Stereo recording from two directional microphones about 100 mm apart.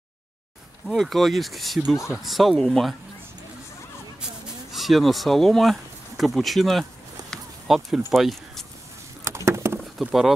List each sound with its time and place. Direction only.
0.8 s speech: centre (ahead or behind)
4.6 s speech: centre (ahead or behind)
9.2 s a sound: 25° right (ahead or behind)
9.9 s speech: centre (ahead or behind)